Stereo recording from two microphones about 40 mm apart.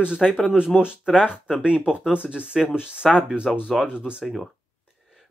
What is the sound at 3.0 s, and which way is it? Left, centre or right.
Speech, centre.